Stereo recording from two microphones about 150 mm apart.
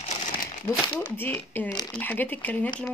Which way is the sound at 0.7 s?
15° left (ahead or behind).